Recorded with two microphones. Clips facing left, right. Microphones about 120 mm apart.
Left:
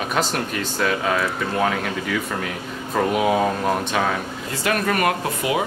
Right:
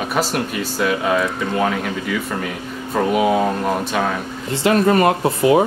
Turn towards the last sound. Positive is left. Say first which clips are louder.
# right 8 dB
turn(degrees=-30)  # may be behind; listen again after turning